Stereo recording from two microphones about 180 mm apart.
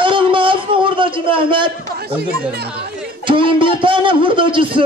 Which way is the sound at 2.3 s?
65° right (ahead or behind).